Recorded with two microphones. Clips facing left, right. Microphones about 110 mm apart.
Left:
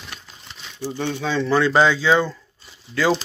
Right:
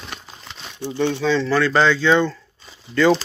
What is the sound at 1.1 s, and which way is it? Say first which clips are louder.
Speech: left 1 dB; 10° left (ahead or behind).